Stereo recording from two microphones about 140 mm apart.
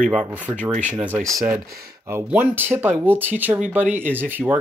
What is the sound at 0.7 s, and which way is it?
Speech, 60° right (ahead or behind).